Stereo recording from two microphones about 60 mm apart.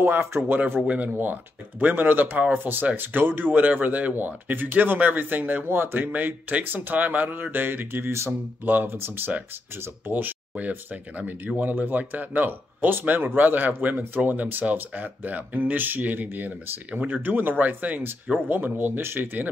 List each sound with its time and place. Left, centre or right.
0.0 s speech: right